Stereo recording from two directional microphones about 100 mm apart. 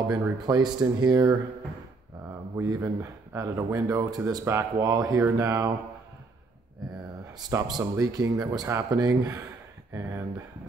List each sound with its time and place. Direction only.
0.0 s speech: 35° right (ahead or behind)
2.2 s speech: 30° right (ahead or behind)
7.3 s speech: 40° right (ahead or behind)